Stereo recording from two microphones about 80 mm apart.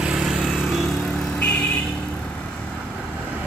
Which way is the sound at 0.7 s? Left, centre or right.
Centre.